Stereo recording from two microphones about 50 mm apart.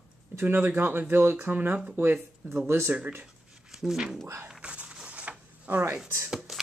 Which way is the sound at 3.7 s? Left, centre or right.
Centre.